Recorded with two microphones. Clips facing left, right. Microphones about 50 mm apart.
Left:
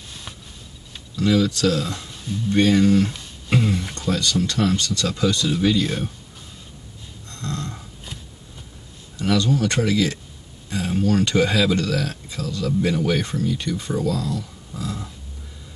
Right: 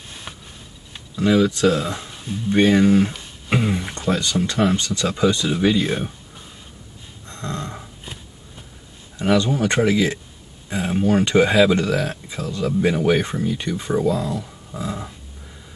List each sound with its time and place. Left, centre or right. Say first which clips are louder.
1.1 s speech: right 2 dB; right
7.2 s snoring: right 1 dB; right
9.2 s speech: right 2 dB; right